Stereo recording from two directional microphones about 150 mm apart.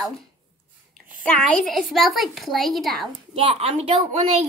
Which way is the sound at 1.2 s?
5° left (ahead or behind).